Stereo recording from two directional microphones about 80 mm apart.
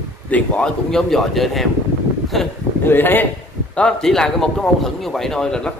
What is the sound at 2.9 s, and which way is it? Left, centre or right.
Speech, left.